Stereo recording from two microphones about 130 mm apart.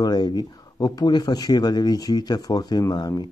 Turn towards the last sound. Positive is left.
turn(degrees=30)  # may be behind; listen again after turning